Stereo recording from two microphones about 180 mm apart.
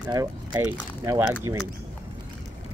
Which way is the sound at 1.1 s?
15° right (ahead or behind).